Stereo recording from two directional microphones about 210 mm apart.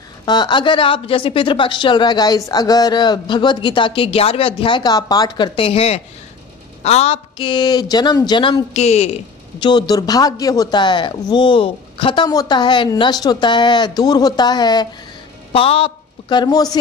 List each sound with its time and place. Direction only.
0.2 s a woman's voice: 20° left (ahead or behind)